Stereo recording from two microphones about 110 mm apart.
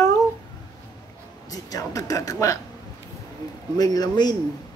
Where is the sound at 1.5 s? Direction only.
35° left (ahead or behind).